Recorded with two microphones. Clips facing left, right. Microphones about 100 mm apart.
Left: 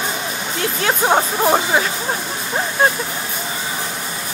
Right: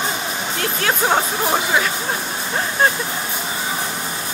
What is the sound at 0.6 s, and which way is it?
Speech, 30° left (ahead or behind).